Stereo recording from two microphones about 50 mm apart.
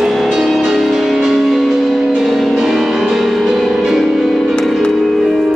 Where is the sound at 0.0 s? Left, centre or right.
Centre.